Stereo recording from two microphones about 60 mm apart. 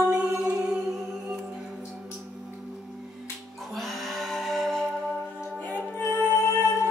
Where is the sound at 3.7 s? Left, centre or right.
Centre.